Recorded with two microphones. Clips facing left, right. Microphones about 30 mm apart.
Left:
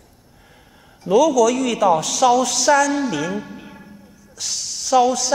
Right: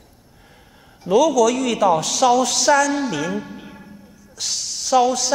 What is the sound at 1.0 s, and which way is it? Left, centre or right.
A woman's voice, centre.